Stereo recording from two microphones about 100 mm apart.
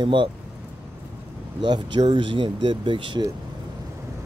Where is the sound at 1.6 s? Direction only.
50° right (ahead or behind).